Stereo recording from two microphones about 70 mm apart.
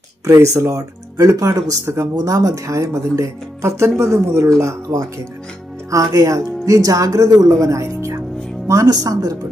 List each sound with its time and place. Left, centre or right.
0.3 s speech: right